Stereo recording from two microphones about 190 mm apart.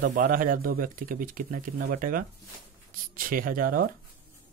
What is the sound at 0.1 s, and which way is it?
Speech, 45° right (ahead or behind).